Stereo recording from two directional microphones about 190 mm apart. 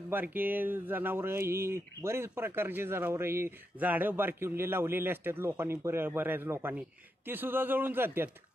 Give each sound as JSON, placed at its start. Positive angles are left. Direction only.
{"t": 0.1, "sound": "speech", "side_deg": -10}